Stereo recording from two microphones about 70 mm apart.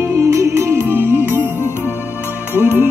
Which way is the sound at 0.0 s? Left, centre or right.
Right.